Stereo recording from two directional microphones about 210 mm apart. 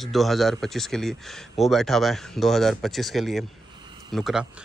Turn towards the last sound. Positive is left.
turn(degrees=0)  # may be behind; listen again after turning